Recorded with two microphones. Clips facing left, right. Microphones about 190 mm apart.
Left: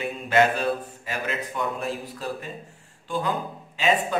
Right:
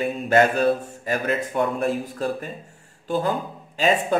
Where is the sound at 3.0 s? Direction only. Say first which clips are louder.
Right 5 dB; 40° right (ahead or behind).